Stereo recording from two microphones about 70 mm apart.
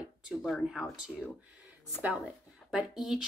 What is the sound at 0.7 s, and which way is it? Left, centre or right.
Speech, centre.